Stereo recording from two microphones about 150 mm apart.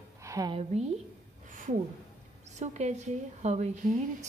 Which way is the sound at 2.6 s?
50° right (ahead or behind).